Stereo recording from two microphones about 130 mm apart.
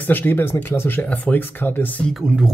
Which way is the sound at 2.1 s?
5° right (ahead or behind).